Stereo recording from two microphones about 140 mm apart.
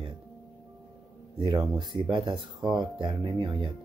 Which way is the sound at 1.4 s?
30° right (ahead or behind).